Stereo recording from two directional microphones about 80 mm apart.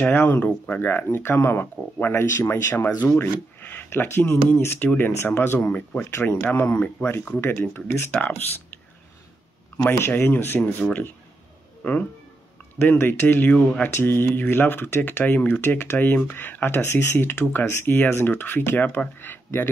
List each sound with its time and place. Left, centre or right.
0.0 s speech: left
5.7 s speech: centre
6.0 s speech: left
9.9 s speech: left
13.5 s speech: centre
13.8 s speech: left